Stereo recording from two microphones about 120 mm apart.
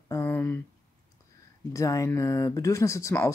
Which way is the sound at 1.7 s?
25° left (ahead or behind).